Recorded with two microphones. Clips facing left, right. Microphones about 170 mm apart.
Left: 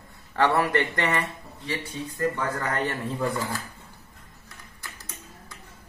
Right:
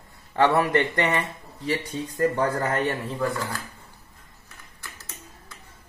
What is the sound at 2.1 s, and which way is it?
Speech, 35° right (ahead or behind).